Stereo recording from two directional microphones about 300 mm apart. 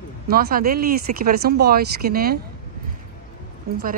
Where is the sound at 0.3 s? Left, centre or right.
Right.